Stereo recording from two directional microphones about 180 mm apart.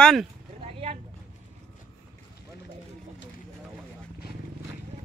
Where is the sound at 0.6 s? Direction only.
35° right (ahead or behind).